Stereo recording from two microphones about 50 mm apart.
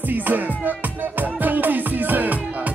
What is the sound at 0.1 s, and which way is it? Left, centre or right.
Music, right.